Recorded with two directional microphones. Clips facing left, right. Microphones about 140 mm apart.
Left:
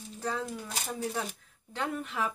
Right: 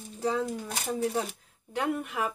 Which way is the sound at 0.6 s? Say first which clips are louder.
Right 5 dB; 45° right (ahead or behind).